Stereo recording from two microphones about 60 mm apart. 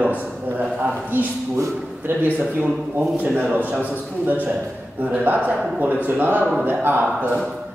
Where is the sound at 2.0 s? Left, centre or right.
Right.